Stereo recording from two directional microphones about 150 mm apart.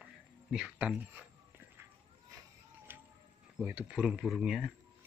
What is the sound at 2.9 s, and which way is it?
Bird, 15° right (ahead or behind).